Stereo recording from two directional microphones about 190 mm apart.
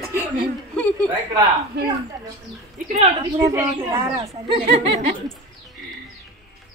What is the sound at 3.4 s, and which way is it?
Speech, 15° right (ahead or behind).